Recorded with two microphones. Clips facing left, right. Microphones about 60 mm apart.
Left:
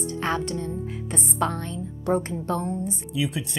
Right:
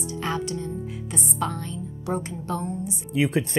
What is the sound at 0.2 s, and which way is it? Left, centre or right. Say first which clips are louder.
A woman's voice: left 1 dB; left.